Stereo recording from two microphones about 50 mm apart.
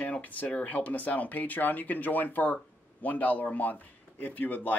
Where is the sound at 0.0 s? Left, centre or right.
Left.